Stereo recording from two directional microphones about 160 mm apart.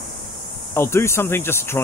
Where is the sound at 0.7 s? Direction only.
15° left (ahead or behind).